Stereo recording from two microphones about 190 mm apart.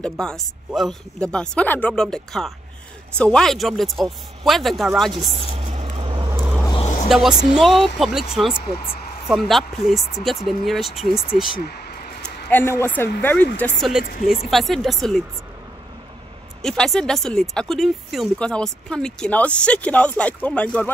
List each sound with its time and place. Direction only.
0.0 s speech: 5° left (ahead or behind)
5.1 s vehicle: 30° right (ahead or behind)
7.1 s speech: centre (ahead or behind)
8.5 s speech: 50° left (ahead or behind)
9.3 s speech: centre (ahead or behind)
12.4 s speech: 10° left (ahead or behind)
16.6 s speech: 5° left (ahead or behind)